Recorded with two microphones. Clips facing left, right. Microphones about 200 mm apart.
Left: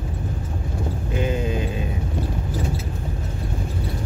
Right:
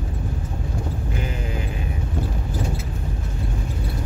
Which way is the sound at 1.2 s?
25° left (ahead or behind).